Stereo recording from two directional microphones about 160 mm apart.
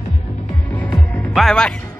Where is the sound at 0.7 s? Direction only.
10° left (ahead or behind).